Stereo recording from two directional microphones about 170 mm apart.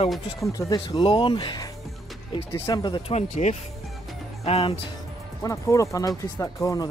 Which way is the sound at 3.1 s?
40° left (ahead or behind).